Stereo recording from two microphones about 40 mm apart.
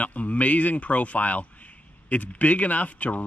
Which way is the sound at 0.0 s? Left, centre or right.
Left.